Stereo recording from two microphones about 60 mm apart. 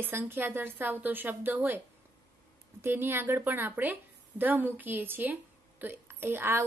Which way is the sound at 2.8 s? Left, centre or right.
Right.